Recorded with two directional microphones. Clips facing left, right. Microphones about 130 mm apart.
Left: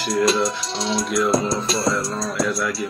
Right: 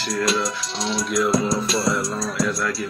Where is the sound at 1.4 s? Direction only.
30° left (ahead or behind).